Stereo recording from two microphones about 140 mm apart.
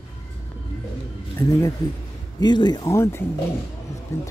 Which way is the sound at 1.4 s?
20° left (ahead or behind).